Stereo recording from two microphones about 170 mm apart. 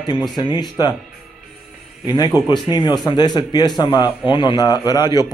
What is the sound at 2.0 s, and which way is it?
A man's voice, 25° left (ahead or behind).